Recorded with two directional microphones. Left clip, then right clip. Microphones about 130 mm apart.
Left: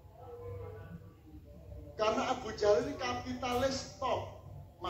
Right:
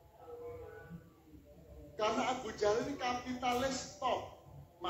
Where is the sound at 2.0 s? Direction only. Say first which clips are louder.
Left 2 dB; 20° right (ahead or behind).